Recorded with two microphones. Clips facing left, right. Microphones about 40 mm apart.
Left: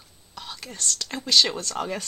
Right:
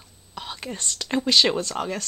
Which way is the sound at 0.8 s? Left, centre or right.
Centre.